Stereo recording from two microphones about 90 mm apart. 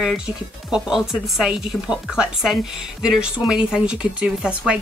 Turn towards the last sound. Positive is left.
turn(degrees=-10)  # may be behind; listen again after turning